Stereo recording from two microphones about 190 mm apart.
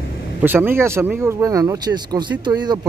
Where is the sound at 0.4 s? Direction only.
10° right (ahead or behind).